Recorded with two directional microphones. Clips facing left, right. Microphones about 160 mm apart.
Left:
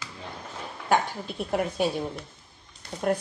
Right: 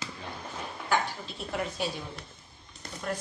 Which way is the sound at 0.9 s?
50° left (ahead or behind).